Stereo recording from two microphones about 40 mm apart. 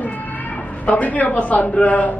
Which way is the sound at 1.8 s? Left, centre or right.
Left.